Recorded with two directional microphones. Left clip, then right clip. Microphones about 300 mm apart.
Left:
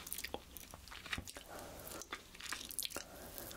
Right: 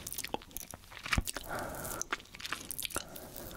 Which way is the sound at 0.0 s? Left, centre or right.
Right.